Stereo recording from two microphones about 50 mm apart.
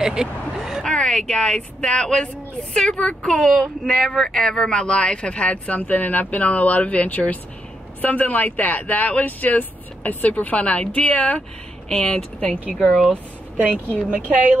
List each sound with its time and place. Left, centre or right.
0.0 s speech: centre
0.8 s speech: centre
11.9 s speech: centre
12.4 s speech: left
14.0 s speech: right